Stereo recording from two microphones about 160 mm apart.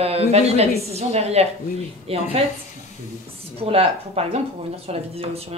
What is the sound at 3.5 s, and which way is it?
A woman's voice, 40° right (ahead or behind).